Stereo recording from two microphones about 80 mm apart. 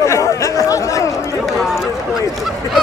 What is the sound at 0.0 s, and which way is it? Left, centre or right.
Chatter, left.